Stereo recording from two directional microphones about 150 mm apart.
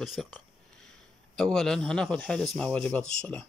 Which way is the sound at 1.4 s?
5° left (ahead or behind).